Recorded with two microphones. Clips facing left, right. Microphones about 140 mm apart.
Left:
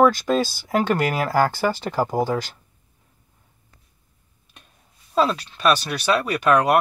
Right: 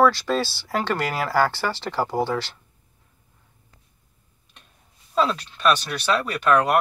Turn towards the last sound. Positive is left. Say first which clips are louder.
# left 2 dB
turn(degrees=10)  # may be behind; listen again after turning